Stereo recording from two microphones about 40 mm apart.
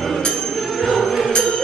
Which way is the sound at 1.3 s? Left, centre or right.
Left.